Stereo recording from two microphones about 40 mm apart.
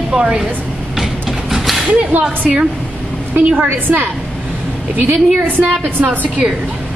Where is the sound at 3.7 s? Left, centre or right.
Right.